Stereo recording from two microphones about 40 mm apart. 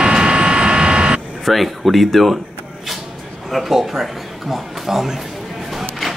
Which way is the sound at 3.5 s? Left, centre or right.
Centre.